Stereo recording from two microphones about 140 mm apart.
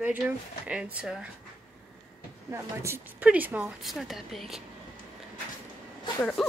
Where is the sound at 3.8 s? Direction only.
Centre (ahead or behind).